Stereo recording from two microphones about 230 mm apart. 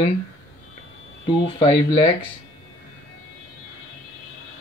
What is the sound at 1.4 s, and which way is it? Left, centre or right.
Speech, left.